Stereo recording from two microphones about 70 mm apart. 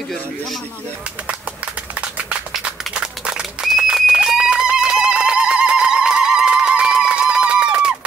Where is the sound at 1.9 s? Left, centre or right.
Centre.